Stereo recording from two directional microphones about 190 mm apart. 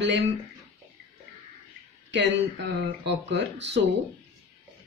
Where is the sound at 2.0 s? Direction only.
65° right (ahead or behind).